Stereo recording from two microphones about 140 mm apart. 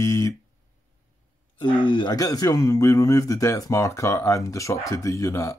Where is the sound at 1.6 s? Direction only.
35° left (ahead or behind).